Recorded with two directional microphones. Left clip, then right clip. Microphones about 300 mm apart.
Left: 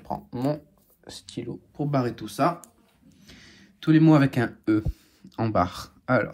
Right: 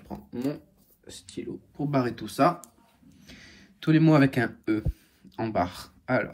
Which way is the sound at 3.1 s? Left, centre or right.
Centre.